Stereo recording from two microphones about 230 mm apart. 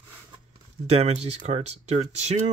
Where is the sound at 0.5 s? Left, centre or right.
Right.